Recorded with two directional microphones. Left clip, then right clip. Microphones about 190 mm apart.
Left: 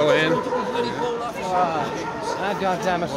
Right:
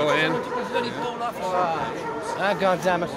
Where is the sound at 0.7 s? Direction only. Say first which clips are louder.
Left 3 dB; 45° right (ahead or behind).